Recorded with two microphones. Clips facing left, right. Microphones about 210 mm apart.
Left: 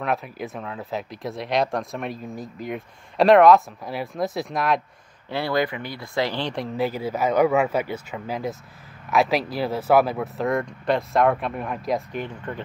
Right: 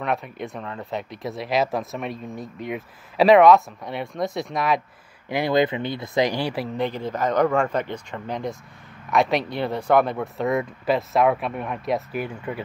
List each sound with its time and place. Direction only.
0.0 s speech: centre (ahead or behind)
5.3 s speech: 20° right (ahead or behind)
6.8 s speech: 5° left (ahead or behind); by 12.6 s 10° right (ahead or behind)